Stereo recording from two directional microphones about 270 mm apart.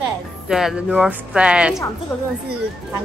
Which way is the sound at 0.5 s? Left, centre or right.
Centre.